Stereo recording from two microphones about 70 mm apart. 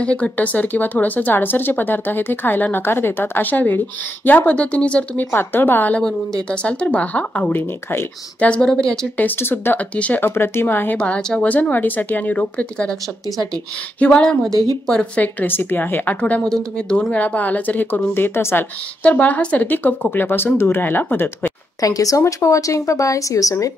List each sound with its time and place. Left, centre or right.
0.0 s speech: centre
5.2 s speech: left
6.5 s speech: centre
9.1 s speech: left
9.9 s speech: centre
10.2 s speech: left
11.0 s speech: centre
11.4 s speech: left
13.9 s speech: centre
16.4 s speech: centre; by 18.7 s left
19.0 s speech: left
21.8 s speech: left